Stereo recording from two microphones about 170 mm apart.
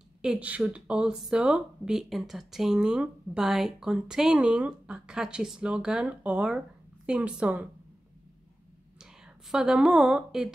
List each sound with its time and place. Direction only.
0.2 s speech: 5° right (ahead or behind)
8.9 s a woman's voice: 5° right (ahead or behind)